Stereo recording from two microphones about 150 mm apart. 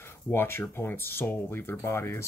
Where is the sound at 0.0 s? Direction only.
15° left (ahead or behind).